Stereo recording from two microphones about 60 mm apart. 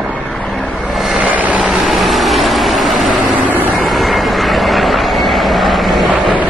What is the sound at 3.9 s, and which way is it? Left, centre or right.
Vehicle, centre.